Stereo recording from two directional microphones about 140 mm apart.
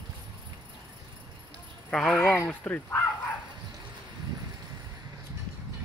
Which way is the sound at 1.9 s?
Centre (ahead or behind).